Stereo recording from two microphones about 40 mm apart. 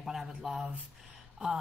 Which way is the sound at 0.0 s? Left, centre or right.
Centre.